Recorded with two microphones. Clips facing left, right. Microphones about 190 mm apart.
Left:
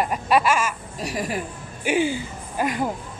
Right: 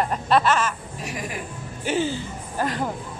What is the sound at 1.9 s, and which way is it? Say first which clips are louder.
Speech: left 2 dB; 10° left (ahead or behind).